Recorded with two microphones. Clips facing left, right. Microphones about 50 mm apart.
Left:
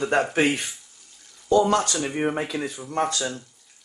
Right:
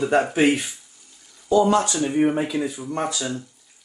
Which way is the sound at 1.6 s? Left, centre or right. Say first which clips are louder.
Right 2 dB; right.